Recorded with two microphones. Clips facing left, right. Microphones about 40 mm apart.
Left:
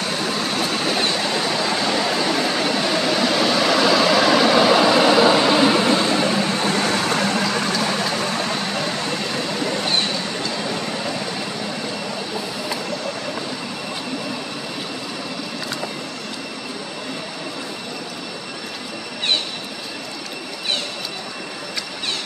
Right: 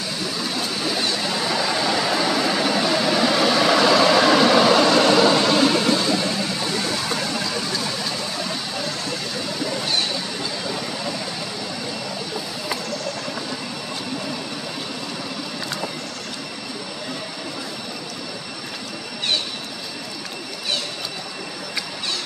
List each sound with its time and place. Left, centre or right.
0.7 s vehicle: left
1.9 s a sound: centre
2.3 s vehicle: centre; by 8.9 s left